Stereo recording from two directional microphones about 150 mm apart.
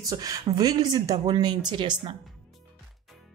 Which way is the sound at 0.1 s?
25° right (ahead or behind).